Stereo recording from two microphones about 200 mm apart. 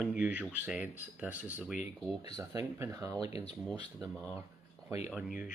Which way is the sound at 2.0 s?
20° right (ahead or behind).